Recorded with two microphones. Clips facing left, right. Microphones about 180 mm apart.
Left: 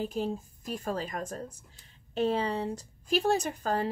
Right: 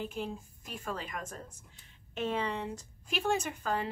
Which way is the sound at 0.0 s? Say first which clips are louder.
Left 6 dB; 40° left (ahead or behind).